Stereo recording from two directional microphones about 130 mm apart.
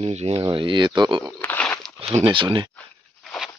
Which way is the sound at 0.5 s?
40° right (ahead or behind).